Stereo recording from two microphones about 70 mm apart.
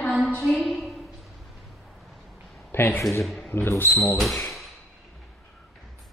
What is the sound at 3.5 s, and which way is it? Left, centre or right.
Speech, left.